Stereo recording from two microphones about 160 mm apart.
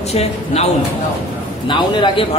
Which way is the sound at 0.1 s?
40° left (ahead or behind).